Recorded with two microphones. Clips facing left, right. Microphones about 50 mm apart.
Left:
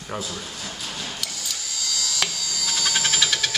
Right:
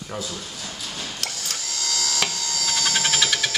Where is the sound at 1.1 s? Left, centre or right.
Right.